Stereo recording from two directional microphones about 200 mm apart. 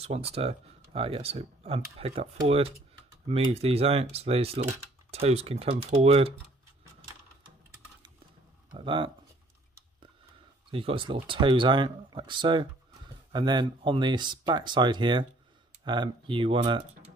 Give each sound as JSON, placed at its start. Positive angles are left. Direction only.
{"t": 0.0, "sound": "speech", "side_deg": -30}
{"t": 8.7, "sound": "speech", "side_deg": -25}
{"t": 10.7, "sound": "speech", "side_deg": -25}